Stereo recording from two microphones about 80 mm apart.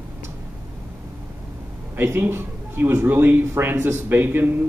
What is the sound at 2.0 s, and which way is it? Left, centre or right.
Speech, right.